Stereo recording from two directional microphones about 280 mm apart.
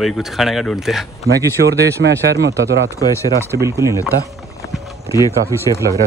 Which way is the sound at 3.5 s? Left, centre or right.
Centre.